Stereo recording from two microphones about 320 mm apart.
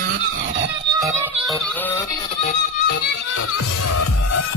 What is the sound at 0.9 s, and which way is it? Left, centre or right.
Music, centre.